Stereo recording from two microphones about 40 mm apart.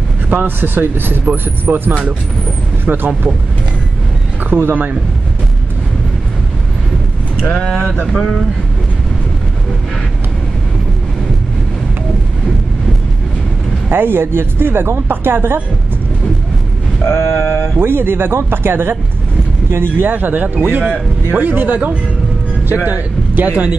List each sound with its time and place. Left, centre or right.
0.3 s speech: right
4.5 s speech: right
8.1 s speech: centre
13.8 s speech: right
17.1 s a sound: left
17.7 s speech: right
20.1 s speech: right